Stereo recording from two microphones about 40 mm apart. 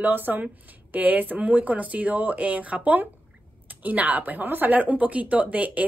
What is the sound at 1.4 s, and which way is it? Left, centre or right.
A woman's voice, right.